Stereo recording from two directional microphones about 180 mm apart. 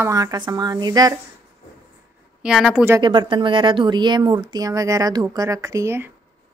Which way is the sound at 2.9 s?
25° right (ahead or behind).